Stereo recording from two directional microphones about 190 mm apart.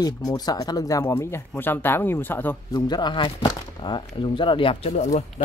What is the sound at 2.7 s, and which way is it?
Speech, 20° left (ahead or behind).